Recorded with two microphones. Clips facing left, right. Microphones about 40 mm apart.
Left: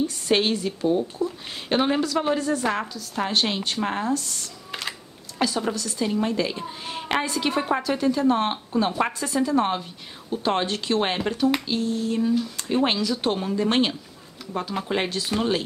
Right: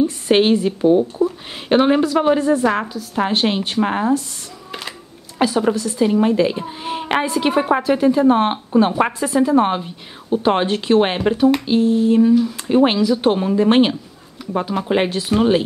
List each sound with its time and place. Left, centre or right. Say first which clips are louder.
0.0 s a woman's voice: right 7 dB; right